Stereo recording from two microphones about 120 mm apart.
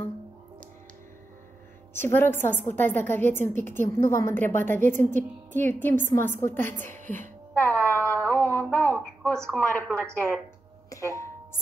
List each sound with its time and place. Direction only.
2.0 s a woman's voice: 20° left (ahead or behind)
7.5 s music: 15° left (ahead or behind)
8.3 s a woman's voice: 15° left (ahead or behind)
10.9 s doorbell: 25° left (ahead or behind)